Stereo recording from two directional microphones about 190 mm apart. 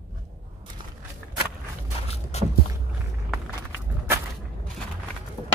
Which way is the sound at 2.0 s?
35° left (ahead or behind).